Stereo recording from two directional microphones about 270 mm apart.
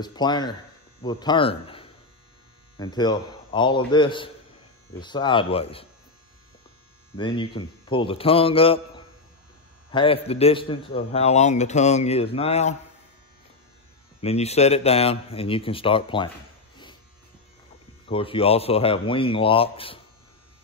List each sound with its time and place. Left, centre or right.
0.0 s a man's voice: centre
7.2 s a man's voice: centre
14.2 s a man's voice: left
18.0 s a man's voice: centre